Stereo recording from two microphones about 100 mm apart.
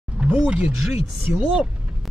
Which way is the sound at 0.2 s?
10° right (ahead or behind).